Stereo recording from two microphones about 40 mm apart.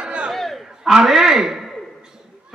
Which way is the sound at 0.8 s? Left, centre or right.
Centre.